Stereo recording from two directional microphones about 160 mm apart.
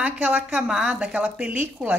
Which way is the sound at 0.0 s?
5° right (ahead or behind).